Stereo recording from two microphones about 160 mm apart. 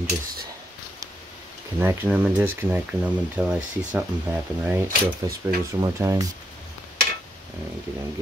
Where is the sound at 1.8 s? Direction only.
15° right (ahead or behind).